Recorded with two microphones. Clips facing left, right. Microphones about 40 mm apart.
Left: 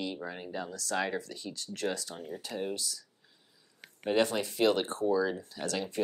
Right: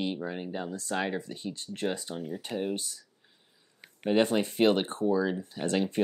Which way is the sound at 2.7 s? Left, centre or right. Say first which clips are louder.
Right 3 dB; right.